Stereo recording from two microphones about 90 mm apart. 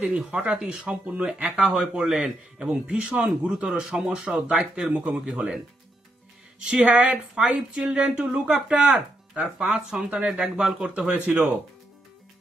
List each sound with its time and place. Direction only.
0.0 s speech: 10° right (ahead or behind)
6.6 s speech: 15° right (ahead or behind)